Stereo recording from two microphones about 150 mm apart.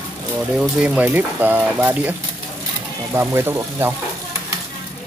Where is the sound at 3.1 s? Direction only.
15° right (ahead or behind).